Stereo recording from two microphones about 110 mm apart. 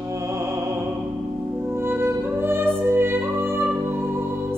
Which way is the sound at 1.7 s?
20° right (ahead or behind).